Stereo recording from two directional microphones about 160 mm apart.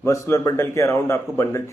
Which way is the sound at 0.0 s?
20° left (ahead or behind).